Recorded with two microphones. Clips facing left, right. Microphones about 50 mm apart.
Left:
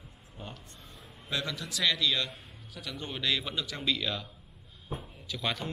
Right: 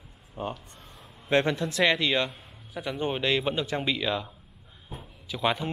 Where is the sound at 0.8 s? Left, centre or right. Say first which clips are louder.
Right 2 dB; centre.